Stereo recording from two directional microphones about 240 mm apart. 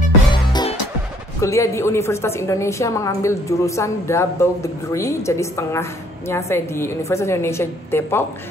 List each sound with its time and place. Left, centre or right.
0.3 s music: centre
1.4 s a woman's voice: centre